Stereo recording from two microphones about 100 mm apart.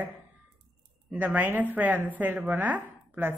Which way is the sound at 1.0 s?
15° right (ahead or behind).